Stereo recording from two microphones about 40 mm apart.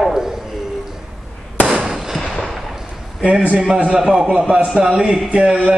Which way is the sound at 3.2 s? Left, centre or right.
Right.